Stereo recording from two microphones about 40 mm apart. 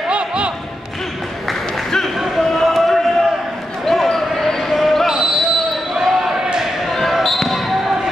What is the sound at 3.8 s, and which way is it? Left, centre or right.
Basketball bounce, centre.